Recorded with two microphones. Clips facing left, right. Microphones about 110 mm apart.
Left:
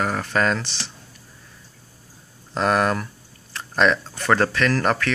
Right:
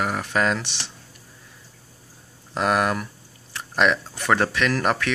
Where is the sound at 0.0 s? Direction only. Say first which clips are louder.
Left 1 dB; 15° right (ahead or behind).